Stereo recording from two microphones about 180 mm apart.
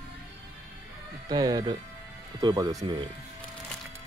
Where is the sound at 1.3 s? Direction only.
20° right (ahead or behind).